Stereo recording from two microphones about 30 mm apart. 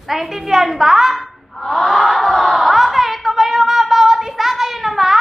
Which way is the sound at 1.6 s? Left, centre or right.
Left.